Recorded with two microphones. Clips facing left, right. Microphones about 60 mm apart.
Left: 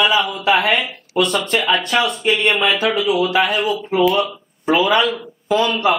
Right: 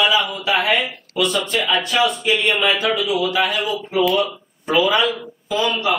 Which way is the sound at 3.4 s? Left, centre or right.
Left.